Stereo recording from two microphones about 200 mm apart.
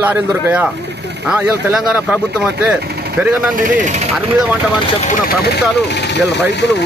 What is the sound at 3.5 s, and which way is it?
Speech, 40° right (ahead or behind).